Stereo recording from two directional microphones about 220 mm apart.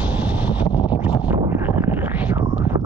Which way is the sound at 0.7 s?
20° left (ahead or behind).